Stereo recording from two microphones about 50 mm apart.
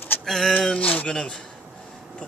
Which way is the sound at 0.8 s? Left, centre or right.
Left.